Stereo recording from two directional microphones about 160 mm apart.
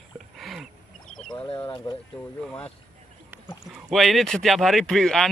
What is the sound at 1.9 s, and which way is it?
Speech, 30° left (ahead or behind).